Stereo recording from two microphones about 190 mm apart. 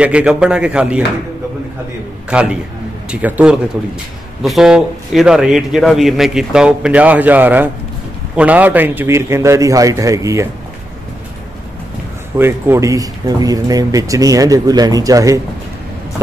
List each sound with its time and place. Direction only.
0.0 s a man's voice: 5° right (ahead or behind)
2.2 s a man's voice: 5° right (ahead or behind)
12.4 s speech: 10° right (ahead or behind)